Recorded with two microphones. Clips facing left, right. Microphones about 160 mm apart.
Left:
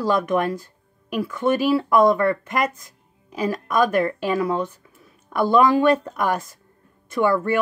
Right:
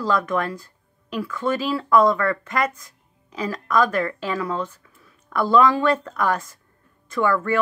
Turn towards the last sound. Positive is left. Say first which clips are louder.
# left 2 dB
turn(degrees=20)  # may be behind; listen again after turning